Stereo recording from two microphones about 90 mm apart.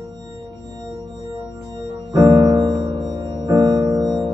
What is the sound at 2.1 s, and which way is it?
Music, 55° right (ahead or behind).